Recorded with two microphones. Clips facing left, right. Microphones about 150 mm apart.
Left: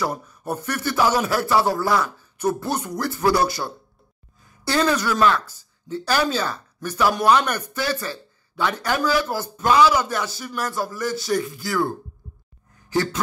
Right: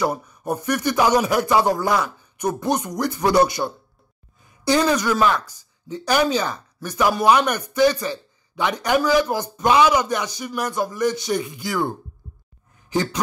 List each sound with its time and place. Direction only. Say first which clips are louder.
0.1 s speech: right 3 dB; 15° right (ahead or behind)
12.9 s speech: even; 15° right (ahead or behind)